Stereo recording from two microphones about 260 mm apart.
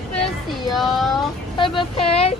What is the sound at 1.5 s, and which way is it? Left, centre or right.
Speech, centre.